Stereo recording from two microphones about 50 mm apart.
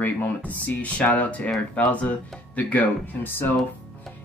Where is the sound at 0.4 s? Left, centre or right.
Left.